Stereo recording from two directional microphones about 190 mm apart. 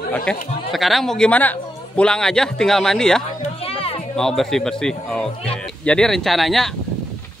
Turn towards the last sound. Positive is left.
turn(degrees=0)  # may be behind; listen again after turning